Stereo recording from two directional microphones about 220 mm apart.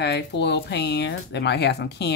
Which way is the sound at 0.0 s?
50° left (ahead or behind).